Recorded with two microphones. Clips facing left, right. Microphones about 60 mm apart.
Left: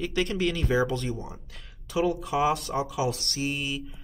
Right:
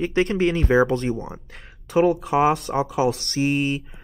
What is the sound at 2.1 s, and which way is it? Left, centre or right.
Mantra, right.